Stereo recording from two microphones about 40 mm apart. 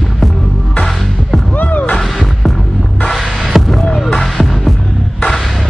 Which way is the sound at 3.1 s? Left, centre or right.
Centre.